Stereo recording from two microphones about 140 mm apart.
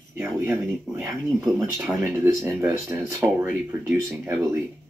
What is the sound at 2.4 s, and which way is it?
Speech, 15° right (ahead or behind).